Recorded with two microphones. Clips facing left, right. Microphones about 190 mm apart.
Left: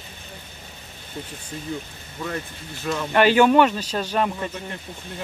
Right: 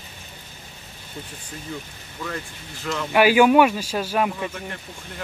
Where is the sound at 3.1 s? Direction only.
10° right (ahead or behind).